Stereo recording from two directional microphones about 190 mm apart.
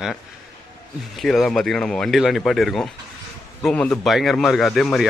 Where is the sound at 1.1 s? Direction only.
Centre (ahead or behind).